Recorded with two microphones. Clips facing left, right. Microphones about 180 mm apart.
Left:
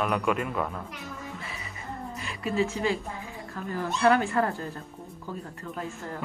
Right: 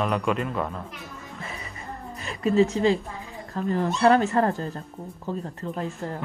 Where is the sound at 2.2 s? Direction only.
40° right (ahead or behind).